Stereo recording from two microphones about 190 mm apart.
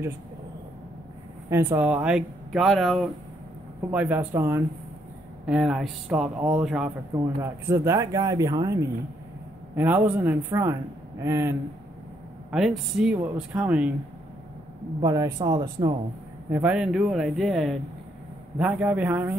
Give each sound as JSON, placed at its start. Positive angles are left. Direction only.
{"t": 1.5, "sound": "a man's voice", "side_deg": -10}
{"t": 5.5, "sound": "a man's voice", "side_deg": -5}
{"t": 12.4, "sound": "a man's voice", "side_deg": 0}
{"t": 15.0, "sound": "speech", "side_deg": -20}
{"t": 16.4, "sound": "a man's voice", "side_deg": -10}